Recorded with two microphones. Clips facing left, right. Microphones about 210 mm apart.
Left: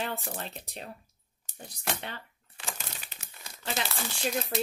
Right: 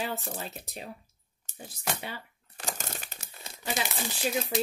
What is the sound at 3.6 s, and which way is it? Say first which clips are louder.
Speech: right 1 dB; 15° right (ahead or behind).